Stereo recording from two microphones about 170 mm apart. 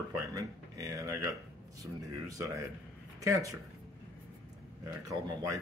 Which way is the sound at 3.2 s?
20° right (ahead or behind).